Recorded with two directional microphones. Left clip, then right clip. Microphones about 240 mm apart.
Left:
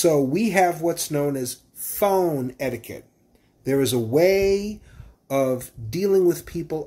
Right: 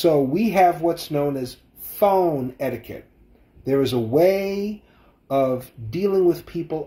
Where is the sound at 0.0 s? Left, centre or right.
Centre.